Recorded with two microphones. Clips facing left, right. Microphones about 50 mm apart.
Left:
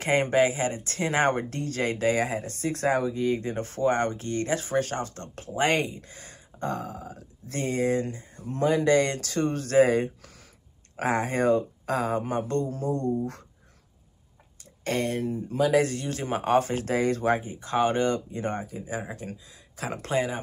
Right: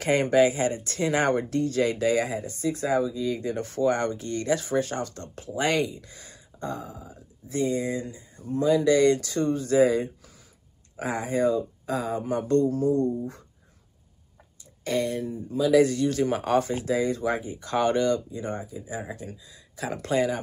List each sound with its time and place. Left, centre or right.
0.0 s speech: left
2.5 s speech: left
12.4 s speech: left
13.2 s speech: left
14.8 s speech: left
16.7 s speech: left
17.4 s speech: left
18.4 s speech: left